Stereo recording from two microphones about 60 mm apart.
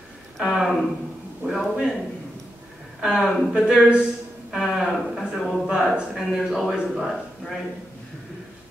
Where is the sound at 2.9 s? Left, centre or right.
Centre.